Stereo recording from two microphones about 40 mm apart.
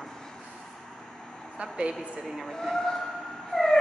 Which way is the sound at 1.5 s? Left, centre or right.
Right.